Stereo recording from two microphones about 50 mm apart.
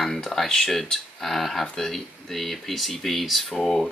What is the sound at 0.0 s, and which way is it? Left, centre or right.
Speech, centre.